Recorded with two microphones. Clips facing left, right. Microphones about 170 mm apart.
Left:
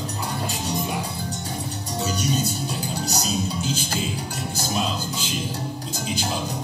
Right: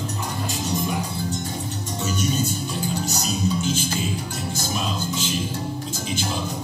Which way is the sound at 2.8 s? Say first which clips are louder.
Right 1 dB; 35° left (ahead or behind).